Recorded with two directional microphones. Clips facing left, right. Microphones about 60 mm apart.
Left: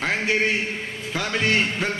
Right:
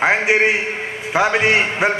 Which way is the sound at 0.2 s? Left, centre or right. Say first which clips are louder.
Right 6 dB; centre.